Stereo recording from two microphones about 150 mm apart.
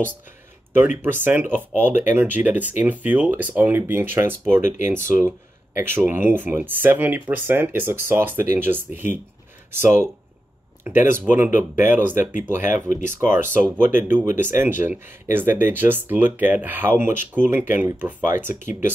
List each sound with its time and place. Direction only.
1.2 s speech: 10° right (ahead or behind)
4.6 s speech: 55° left (ahead or behind)
5.8 s speech: 15° right (ahead or behind)
12.9 s speech: 55° left (ahead or behind)
13.5 s speech: 15° right (ahead or behind)
18.6 s speech: 55° left (ahead or behind)